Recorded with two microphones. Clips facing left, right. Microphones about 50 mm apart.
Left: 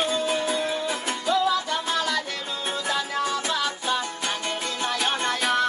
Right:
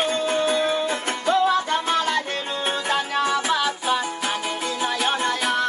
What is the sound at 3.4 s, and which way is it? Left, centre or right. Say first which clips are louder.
Music: right 4 dB; right.